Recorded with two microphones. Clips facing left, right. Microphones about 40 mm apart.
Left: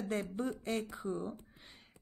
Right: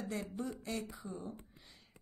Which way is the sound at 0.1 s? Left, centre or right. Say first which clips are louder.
Left 6 dB; left.